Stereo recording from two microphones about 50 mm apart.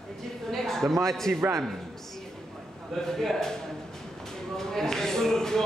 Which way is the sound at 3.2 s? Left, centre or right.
Centre.